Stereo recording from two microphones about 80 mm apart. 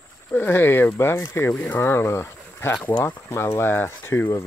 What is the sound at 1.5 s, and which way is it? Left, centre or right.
Speech, centre.